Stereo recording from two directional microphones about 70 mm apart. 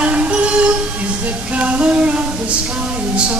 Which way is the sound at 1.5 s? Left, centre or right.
Centre.